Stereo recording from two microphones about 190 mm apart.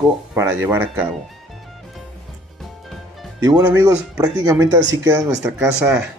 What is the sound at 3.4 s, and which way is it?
Speech, 20° right (ahead or behind).